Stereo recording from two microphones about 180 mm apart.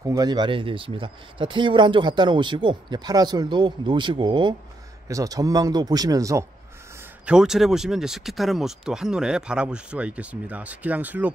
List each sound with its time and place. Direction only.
0.0 s speech: 20° right (ahead or behind)
7.0 s speech: 5° right (ahead or behind)